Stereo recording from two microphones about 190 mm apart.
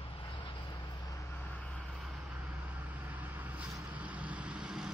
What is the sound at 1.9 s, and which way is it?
Vehicle, 5° right (ahead or behind).